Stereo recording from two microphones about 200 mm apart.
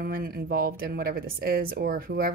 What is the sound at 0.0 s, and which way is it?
Speech, 50° right (ahead or behind).